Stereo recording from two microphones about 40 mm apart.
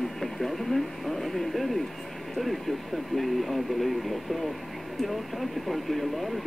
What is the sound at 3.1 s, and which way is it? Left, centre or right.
Speech, centre.